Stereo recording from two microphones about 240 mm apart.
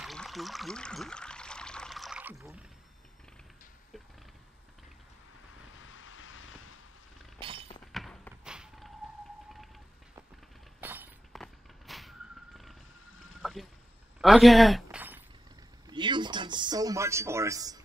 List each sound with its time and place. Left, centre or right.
0.0 s pour: centre
5.9 s vehicle: left
7.3 s breaking: right
7.9 s a sound: centre
10.8 s shatter: centre
11.4 s vehicle: centre
13.4 s rowboat: centre
14.2 s a sound: centre
15.9 s a sound: centre